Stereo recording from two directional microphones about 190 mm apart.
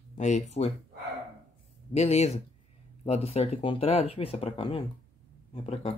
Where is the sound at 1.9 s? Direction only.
35° left (ahead or behind).